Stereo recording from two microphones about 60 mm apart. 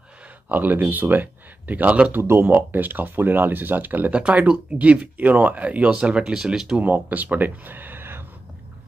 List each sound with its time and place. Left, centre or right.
0.5 s speech: right
2.1 s speech: right
4.1 s speech: right
6.8 s speech: right